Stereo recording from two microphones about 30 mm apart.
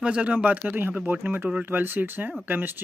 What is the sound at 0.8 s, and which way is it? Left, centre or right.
Speech, right.